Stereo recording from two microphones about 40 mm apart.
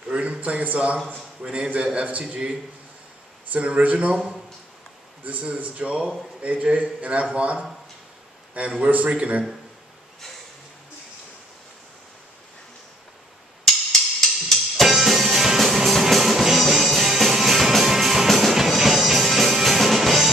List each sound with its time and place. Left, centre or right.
0.1 s a man's voice: right
2.2 s a man's voice: right
3.5 s a man's voice: right
5.2 s a sound: right
5.6 s speech: right
6.5 s a man's voice: right
14.2 s music: centre
14.9 s music: centre